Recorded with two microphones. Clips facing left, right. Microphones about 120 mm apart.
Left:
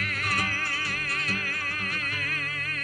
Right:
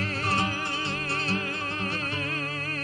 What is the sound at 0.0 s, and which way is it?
Music, 30° right (ahead or behind).